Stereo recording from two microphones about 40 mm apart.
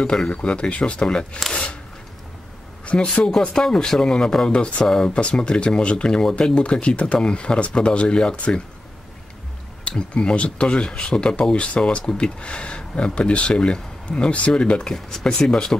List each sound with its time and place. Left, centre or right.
0.0 s speech: left
1.0 s speech: centre
2.8 s a sound: left
3.3 s speech: centre
4.5 s speech: left
4.8 s speech: centre
5.1 s speech: left
9.8 s speech: left
11.5 s speech: left